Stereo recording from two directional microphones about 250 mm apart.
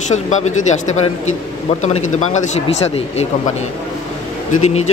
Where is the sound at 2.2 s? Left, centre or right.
Left.